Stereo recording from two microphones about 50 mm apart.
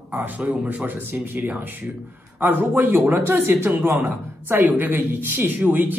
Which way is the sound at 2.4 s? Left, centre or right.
Right.